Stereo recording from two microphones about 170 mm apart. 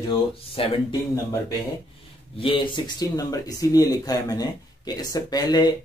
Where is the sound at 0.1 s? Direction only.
30° left (ahead or behind).